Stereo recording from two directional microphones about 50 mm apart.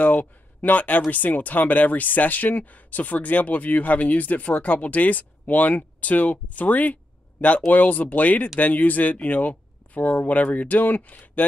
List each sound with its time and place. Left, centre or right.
0.0 s speech: left